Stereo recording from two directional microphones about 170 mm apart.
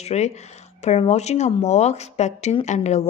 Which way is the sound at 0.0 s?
40° left (ahead or behind).